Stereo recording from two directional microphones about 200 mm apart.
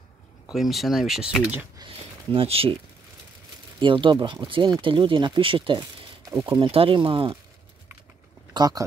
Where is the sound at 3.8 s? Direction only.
25° right (ahead or behind).